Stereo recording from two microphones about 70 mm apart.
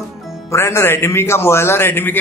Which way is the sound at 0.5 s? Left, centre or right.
Left.